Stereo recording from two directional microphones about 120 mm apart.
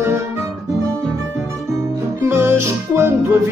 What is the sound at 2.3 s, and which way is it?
Music, 20° right (ahead or behind).